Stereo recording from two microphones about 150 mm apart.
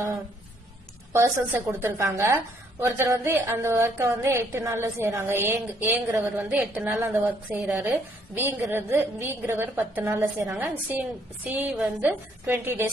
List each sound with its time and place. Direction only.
1.1 s a woman's voice: 15° right (ahead or behind)